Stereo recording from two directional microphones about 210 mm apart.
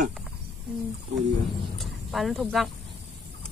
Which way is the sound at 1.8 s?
Centre (ahead or behind).